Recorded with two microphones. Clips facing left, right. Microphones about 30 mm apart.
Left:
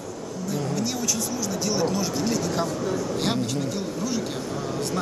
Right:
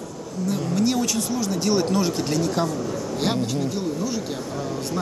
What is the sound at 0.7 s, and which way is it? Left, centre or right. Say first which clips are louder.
Speech: right 8 dB; right.